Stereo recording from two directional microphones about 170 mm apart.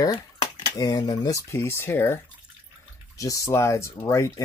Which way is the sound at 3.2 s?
20° left (ahead or behind).